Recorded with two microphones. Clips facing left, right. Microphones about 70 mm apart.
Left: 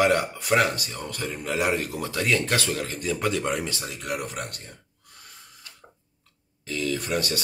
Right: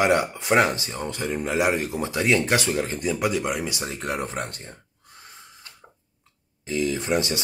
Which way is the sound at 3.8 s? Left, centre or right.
Right.